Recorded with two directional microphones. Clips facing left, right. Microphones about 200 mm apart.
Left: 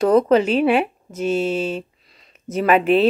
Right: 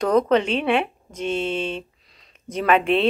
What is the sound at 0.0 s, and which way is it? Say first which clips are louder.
A woman's voice: left 4 dB; 5° left (ahead or behind).